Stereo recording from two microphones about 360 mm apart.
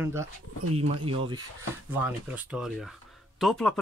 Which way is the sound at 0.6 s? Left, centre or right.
Right.